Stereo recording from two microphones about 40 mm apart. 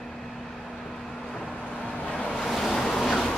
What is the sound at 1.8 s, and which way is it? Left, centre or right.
Vehicle, left.